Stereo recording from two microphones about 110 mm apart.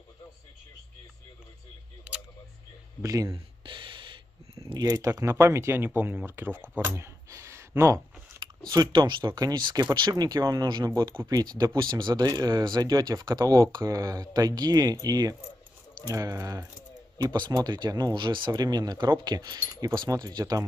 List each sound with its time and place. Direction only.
2.1 s single-lens reflex camera: 10° right (ahead or behind)
3.0 s speech: 30° right (ahead or behind)
3.6 s a sound: 50° right (ahead or behind)
4.7 s speech: 35° right (ahead or behind); by 6.7 s 15° right (ahead or behind)
6.8 s a sound: 25° right (ahead or behind)
8.4 s chewing: 40° right (ahead or behind)
8.9 s speech: 45° right (ahead or behind)